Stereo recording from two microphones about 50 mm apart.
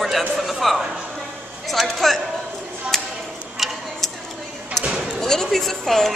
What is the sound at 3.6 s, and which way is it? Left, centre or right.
Stir, centre.